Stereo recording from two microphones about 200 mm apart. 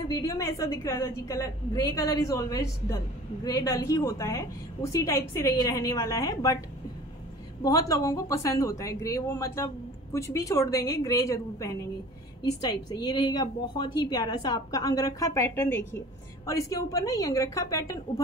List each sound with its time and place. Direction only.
0.1 s a woman's voice: 15° left (ahead or behind)
7.6 s a woman's voice: 15° left (ahead or behind)